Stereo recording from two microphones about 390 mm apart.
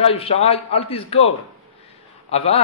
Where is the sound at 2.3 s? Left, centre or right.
Centre.